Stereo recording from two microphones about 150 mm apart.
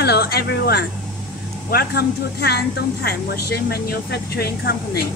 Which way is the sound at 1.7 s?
90° left.